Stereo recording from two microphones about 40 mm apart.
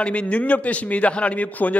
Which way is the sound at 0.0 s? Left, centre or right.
Left.